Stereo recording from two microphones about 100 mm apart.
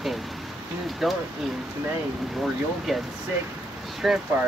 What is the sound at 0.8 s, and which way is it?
Speech, centre (ahead or behind).